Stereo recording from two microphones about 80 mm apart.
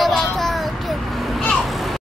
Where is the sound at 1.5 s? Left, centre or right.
Centre.